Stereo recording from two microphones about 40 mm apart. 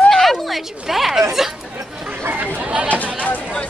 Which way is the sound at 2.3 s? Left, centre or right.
Right.